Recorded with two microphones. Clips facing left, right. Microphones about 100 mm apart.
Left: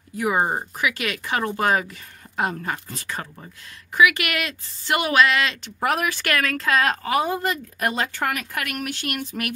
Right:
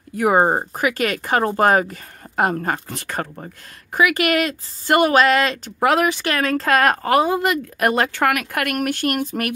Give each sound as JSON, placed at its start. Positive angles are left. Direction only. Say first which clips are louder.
{"t": 0.2, "sound": "speech", "louder": "right 6 dB", "side_deg": -45}
{"t": 3.9, "sound": "speech", "louder": "right 2 dB", "side_deg": -40}
{"t": 5.8, "sound": "speech", "louder": "right 6 dB", "side_deg": -90}
{"t": 6.0, "sound": "speech", "louder": "right 4 dB", "side_deg": -25}
{"t": 6.7, "sound": "speech", "louder": "right 4 dB", "side_deg": -55}
{"t": 7.1, "sound": "speech", "louder": "right 5 dB", "side_deg": -65}